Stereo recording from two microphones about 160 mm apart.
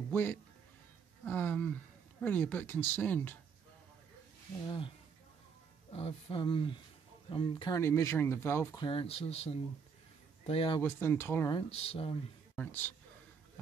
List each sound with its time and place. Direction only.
0.1 s speech: 10° left (ahead or behind)
4.6 s speech: 30° left (ahead or behind)
7.7 s speech: 20° left (ahead or behind)
8.8 s speech: 40° left (ahead or behind)
10.8 s speech: 15° left (ahead or behind)
11.5 s speech: 35° left (ahead or behind)
12.5 s speech: 10° left (ahead or behind)